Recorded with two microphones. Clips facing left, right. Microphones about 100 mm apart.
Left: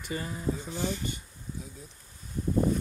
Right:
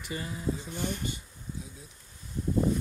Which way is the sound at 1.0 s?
50° left (ahead or behind).